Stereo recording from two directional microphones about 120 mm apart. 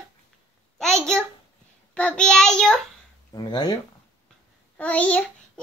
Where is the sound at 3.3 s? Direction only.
35° left (ahead or behind).